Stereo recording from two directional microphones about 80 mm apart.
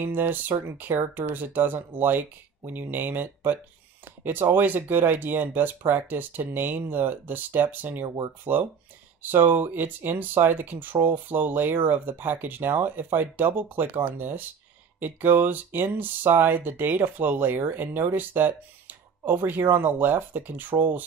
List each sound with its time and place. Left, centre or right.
0.0 s speech: right